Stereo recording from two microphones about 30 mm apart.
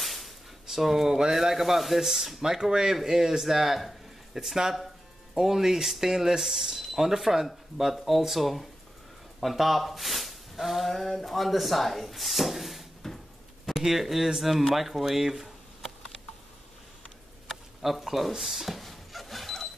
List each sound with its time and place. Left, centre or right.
0.0 s a sound: centre
0.7 s speech: centre
1.0 s speech: right
1.3 s speech: centre
10.9 s speech: centre
13.0 s a sound: centre
13.7 s speech: centre
17.9 s speech: centre
18.8 s power windows: centre